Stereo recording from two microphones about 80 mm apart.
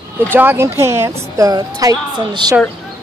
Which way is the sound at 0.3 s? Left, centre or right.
Right.